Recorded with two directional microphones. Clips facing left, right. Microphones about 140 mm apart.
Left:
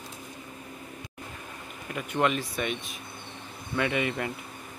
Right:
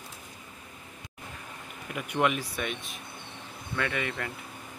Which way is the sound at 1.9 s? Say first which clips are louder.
Left 1 dB; 10° right (ahead or behind).